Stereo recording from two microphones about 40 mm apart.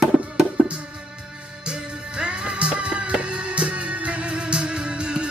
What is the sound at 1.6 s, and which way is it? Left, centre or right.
Music, right.